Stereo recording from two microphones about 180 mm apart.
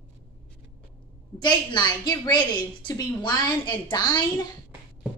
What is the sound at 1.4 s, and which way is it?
A woman's voice, 25° left (ahead or behind).